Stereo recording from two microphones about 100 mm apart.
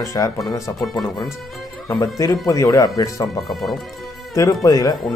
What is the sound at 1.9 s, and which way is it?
Speech, 35° left (ahead or behind).